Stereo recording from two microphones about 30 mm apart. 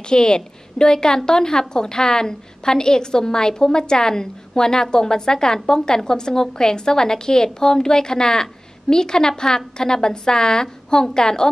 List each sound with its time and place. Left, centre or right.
0.0 s a woman's voice: left